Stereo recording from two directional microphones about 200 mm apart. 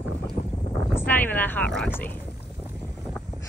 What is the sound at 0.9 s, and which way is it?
Boat, 10° left (ahead or behind).